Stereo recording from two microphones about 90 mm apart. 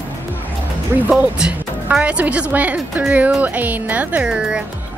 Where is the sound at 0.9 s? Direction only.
20° right (ahead or behind).